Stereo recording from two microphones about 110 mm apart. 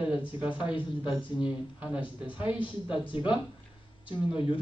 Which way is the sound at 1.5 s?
10° right (ahead or behind).